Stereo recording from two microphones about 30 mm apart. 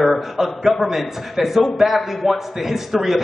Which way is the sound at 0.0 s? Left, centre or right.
Centre.